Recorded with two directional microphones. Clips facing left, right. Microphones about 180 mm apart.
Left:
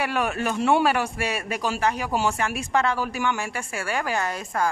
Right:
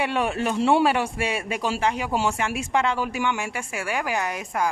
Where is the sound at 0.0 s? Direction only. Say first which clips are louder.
Right 1 dB; 25° right (ahead or behind).